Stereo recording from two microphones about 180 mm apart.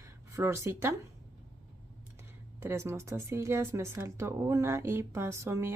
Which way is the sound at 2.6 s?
15° right (ahead or behind).